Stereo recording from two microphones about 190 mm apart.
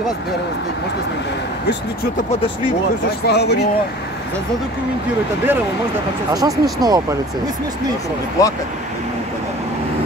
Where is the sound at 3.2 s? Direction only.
60° left (ahead or behind).